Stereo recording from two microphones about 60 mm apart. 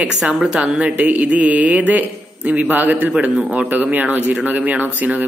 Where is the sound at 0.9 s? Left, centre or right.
Right.